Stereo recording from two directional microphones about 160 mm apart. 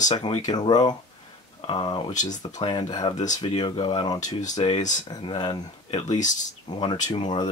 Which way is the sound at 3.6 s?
30° left (ahead or behind).